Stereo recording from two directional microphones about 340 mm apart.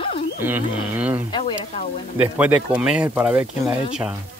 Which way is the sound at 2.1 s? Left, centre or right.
Centre.